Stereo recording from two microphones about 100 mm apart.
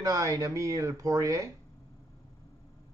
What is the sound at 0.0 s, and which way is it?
A man's voice, 35° right (ahead or behind).